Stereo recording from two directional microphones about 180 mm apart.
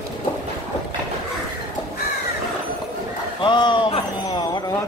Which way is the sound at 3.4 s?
25° left (ahead or behind).